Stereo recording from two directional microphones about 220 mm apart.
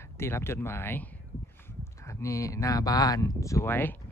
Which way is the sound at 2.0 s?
15° left (ahead or behind).